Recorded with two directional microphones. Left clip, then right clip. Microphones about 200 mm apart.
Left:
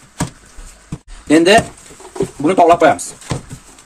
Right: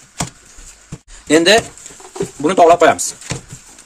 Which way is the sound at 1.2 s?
15° right (ahead or behind).